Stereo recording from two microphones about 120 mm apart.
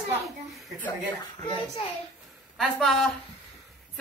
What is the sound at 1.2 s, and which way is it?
Speech, 35° left (ahead or behind).